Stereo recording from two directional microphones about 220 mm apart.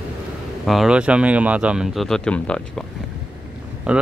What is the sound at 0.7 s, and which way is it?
Speech, centre (ahead or behind).